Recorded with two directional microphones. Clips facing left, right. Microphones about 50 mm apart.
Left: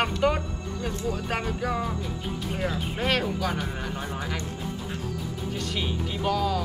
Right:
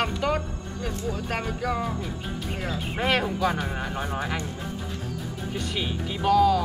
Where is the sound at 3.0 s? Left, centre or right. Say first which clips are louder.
Right 3 dB; centre.